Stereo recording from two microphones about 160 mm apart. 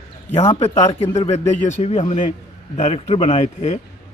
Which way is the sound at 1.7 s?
40° left (ahead or behind).